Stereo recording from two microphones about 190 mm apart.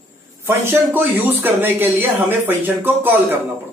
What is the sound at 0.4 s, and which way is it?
Speech, 10° right (ahead or behind).